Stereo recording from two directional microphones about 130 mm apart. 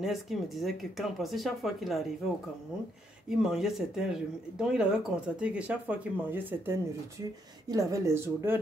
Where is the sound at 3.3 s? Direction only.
5° right (ahead or behind).